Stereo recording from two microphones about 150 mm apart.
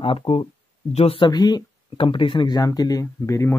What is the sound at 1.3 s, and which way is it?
Speech, 25° left (ahead or behind).